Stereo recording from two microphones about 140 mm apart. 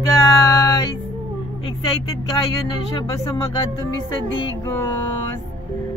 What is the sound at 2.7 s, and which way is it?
Speech, 30° left (ahead or behind).